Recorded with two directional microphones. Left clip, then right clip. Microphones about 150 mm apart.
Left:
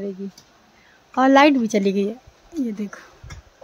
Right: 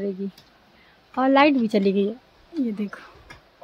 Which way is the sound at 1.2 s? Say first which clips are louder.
Left 4 dB; 15° left (ahead or behind).